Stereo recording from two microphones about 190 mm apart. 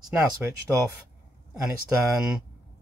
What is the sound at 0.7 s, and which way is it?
Speech, 15° right (ahead or behind).